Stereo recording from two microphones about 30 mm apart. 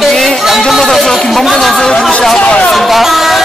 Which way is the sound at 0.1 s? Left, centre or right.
Centre.